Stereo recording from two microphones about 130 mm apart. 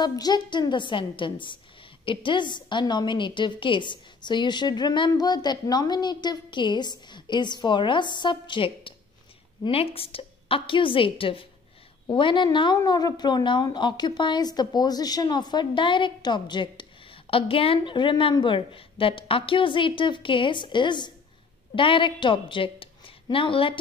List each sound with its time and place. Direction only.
0.0 s a woman's voice: 30° left (ahead or behind)